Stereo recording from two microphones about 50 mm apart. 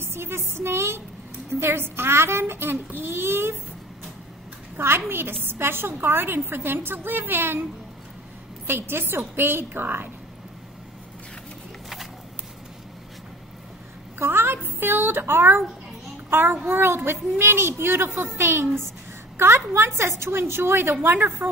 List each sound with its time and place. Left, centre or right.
0.0 s a woman's voice: right
4.7 s a woman's voice: right
8.6 s a woman's voice: right
14.1 s a sound: right
16.3 s a child's voice: right